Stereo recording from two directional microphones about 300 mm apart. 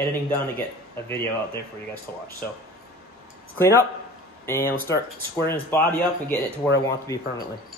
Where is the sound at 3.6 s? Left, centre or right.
Centre.